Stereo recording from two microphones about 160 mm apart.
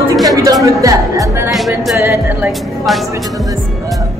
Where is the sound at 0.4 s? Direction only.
20° right (ahead or behind).